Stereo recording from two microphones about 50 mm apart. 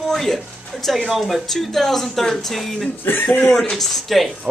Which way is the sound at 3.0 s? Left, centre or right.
Left.